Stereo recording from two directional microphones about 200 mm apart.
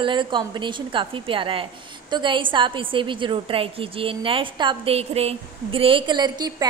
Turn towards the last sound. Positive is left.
turn(degrees=-20)  # may be behind; listen again after turning